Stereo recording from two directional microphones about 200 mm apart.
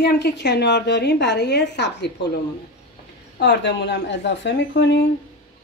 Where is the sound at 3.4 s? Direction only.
60° left (ahead or behind).